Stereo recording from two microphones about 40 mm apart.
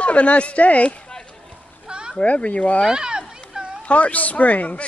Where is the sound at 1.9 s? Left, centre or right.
Right.